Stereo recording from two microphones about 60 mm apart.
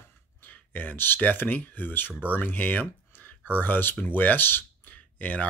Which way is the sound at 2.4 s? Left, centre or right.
Left.